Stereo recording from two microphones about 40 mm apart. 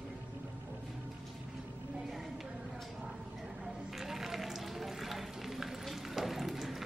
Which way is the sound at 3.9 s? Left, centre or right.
Centre.